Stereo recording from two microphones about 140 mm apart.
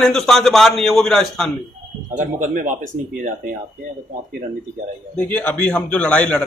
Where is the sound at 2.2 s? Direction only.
65° right (ahead or behind).